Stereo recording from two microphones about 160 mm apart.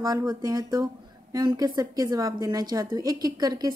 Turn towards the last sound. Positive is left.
turn(degrees=-25)  # may be behind; listen again after turning